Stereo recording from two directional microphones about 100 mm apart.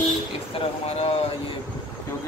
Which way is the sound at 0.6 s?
90° left.